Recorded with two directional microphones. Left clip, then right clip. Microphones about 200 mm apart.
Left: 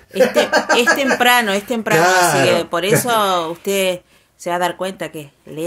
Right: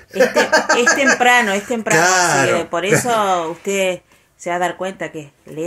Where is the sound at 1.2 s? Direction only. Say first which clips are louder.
Right 1 dB; 15° left (ahead or behind).